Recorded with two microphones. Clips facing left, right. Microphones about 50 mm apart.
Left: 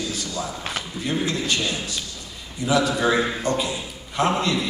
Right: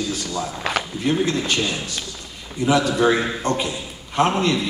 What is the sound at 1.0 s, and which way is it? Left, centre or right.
Speech, right.